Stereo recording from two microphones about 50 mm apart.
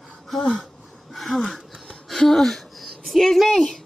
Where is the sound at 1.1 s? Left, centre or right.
Centre.